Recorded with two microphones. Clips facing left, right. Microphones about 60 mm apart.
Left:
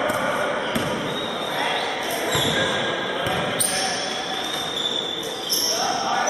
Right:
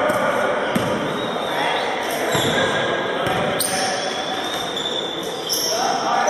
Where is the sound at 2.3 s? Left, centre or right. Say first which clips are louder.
Right 4 dB; centre.